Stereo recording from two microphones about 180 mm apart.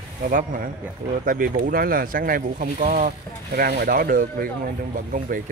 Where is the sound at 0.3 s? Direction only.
50° right (ahead or behind).